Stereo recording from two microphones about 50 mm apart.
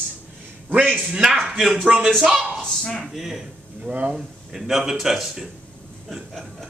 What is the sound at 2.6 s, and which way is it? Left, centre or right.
Speech, centre.